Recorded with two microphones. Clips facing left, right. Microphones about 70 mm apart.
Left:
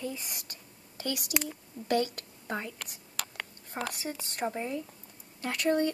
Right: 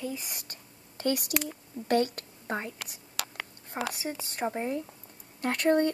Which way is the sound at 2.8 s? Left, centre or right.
Centre.